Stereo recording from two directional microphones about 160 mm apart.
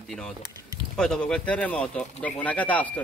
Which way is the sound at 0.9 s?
5° left (ahead or behind).